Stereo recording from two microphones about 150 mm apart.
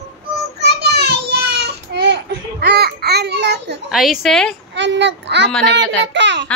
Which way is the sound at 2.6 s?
90° right.